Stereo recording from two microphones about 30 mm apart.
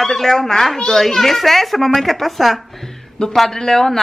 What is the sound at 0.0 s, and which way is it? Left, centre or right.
A child's voice, centre.